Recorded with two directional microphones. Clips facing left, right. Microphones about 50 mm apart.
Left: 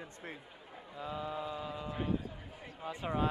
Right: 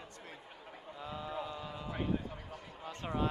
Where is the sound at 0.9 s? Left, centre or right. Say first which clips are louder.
Left 2 dB; centre.